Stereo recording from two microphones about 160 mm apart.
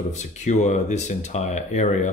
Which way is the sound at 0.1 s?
45° left (ahead or behind).